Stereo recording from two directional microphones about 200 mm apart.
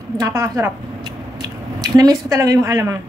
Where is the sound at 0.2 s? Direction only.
15° right (ahead or behind).